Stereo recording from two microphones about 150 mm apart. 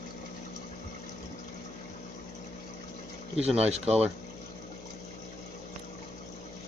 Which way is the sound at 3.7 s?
45° right (ahead or behind).